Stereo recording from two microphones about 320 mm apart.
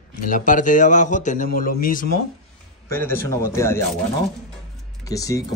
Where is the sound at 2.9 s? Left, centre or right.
Centre.